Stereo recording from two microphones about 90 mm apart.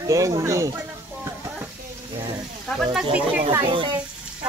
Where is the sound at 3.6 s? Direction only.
70° right (ahead or behind).